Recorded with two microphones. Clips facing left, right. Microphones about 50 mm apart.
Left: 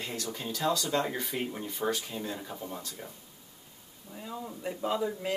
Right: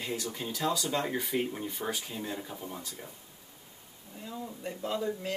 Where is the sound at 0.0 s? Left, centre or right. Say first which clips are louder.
Right 1 dB; centre.